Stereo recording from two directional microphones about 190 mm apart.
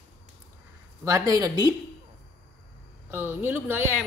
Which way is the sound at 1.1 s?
20° right (ahead or behind).